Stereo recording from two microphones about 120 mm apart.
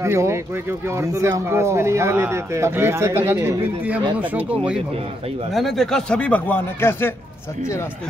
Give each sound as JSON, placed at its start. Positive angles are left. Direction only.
{"t": 0.0, "sound": "speech", "side_deg": -25}
{"t": 5.5, "sound": "speech", "side_deg": 0}